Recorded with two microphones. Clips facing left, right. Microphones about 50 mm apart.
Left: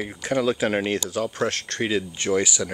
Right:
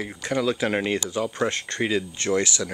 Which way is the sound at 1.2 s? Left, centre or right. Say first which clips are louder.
Even; centre.